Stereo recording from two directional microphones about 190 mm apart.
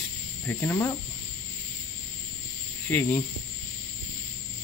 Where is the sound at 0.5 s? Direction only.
10° left (ahead or behind).